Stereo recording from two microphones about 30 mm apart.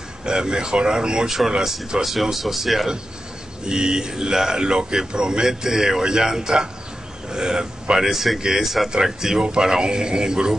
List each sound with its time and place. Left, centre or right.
0.2 s a man's voice: right; by 2.9 s centre
3.6 s a man's voice: right
4.6 s a man's voice: right
5.4 s a man's voice: centre
8.0 s speech: centre
8.4 s a man's voice: right
8.6 s a man's voice: centre; by 10.5 s right